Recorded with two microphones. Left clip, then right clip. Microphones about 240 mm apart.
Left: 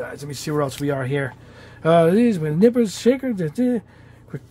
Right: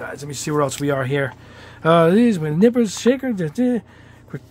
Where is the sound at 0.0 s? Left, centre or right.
Centre.